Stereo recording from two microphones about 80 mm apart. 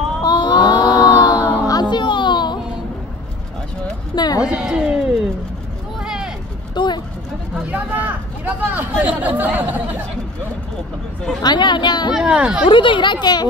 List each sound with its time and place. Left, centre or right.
0.2 s child singing: left
1.7 s music: left
4.1 s a sound: left
4.6 s a sound: centre
5.9 s vehicle: centre
6.7 s a sound: left
7.7 s chatter: right
11.4 s speech: left
12.1 s speech: centre
12.6 s speech: left